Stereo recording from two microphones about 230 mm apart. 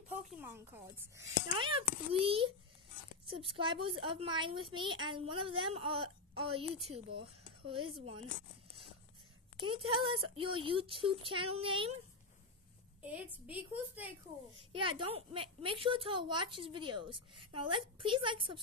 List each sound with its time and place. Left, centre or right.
0.3 s a child's voice: centre; by 8.3 s right
9.6 s a woman's voice: right
13.0 s a child's voice: centre
14.7 s a woman's voice: right